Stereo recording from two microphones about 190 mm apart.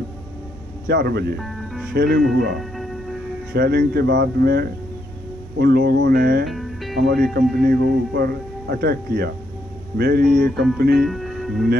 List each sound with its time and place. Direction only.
0.8 s speech: 55° right (ahead or behind)
1.4 s music: centre (ahead or behind)
2.0 s speech: 55° right (ahead or behind)
2.5 s music: centre (ahead or behind)
3.5 s speech: 55° right (ahead or behind)
6.4 s music: centre (ahead or behind)
7.0 s speech: 55° right (ahead or behind)
11.0 s speech: centre (ahead or behind)